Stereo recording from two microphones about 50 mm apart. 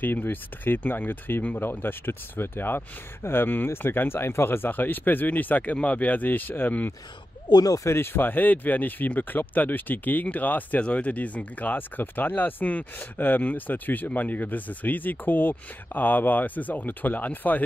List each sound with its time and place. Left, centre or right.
0.0 s speech: left
7.8 s speech: left